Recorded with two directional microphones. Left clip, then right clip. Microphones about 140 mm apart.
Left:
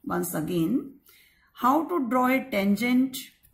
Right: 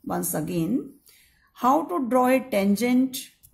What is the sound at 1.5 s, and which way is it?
Speech, 40° right (ahead or behind).